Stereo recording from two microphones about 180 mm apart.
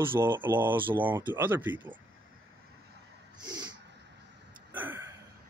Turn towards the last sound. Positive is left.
turn(degrees=-10)  # may be behind; listen again after turning